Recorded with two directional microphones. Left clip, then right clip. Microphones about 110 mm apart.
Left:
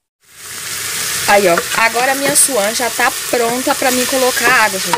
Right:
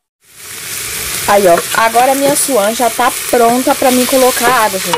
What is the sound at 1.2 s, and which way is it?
Frying, 5° right (ahead or behind).